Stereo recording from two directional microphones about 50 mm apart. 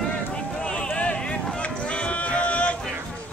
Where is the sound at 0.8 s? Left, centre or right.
Left.